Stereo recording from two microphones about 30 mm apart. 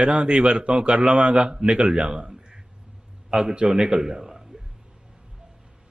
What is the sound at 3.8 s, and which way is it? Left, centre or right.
Speech, centre.